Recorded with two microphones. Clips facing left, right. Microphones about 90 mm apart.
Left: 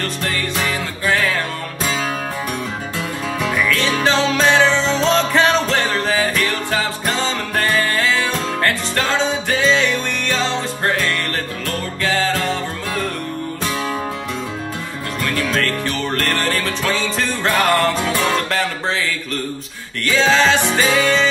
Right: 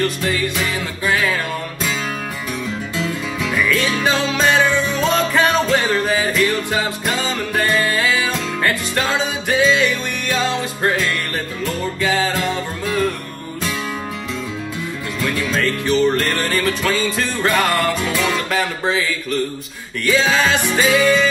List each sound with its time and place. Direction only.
0.0 s music: 5° right (ahead or behind)
3.0 s music: 20° left (ahead or behind)
3.6 s music: 10° right (ahead or behind)
15.5 s music: 10° right (ahead or behind)
18.0 s music: 20° left (ahead or behind)
18.3 s music: 5° right (ahead or behind)